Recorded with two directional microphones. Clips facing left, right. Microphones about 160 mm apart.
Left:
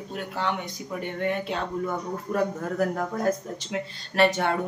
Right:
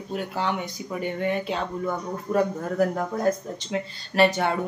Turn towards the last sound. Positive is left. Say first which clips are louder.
# right 1 dB
turn(degrees=0)  # may be behind; listen again after turning